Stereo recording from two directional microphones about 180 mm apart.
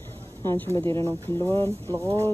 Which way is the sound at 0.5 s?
15° left (ahead or behind).